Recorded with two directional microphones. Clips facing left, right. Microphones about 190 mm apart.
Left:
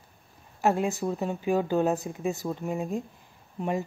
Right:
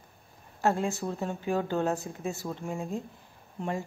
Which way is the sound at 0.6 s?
15° left (ahead or behind).